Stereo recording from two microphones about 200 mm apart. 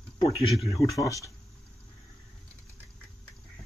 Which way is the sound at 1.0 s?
15° left (ahead or behind).